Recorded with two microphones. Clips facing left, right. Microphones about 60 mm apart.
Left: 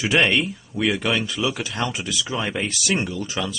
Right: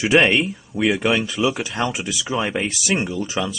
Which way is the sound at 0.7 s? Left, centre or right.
Centre.